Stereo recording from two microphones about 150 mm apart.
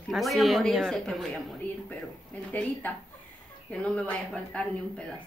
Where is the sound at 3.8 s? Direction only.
10° left (ahead or behind).